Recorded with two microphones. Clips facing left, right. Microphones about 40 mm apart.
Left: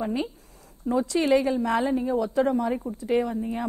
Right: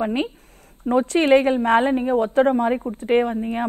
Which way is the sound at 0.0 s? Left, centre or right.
Right.